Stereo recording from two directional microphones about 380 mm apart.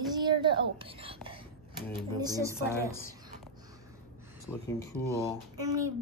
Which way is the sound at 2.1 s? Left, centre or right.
Centre.